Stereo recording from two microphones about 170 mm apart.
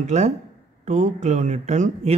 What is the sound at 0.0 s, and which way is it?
A man's voice, 45° right (ahead or behind).